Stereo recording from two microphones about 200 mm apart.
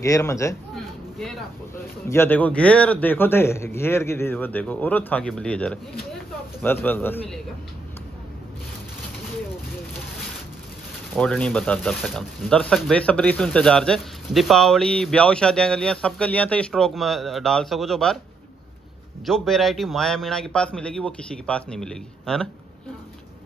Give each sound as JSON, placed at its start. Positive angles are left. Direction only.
{"t": 0.0, "sound": "a man's voice", "side_deg": 15}
{"t": 2.0, "sound": "a man's voice", "side_deg": 10}
{"t": 11.1, "sound": "speech", "side_deg": 5}
{"t": 19.2, "sound": "speech", "side_deg": 0}